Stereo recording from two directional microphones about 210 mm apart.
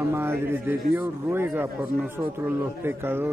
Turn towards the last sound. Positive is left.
turn(degrees=-10)  # may be behind; listen again after turning